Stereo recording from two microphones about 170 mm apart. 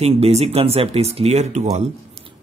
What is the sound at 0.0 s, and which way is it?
Speech, 35° right (ahead or behind).